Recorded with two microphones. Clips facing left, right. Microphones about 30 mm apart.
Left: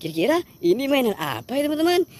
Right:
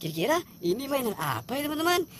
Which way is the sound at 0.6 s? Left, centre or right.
Left.